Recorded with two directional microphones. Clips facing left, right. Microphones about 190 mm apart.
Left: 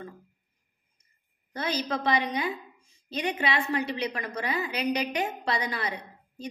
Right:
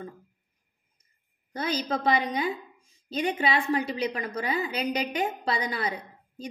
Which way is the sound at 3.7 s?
30° right (ahead or behind).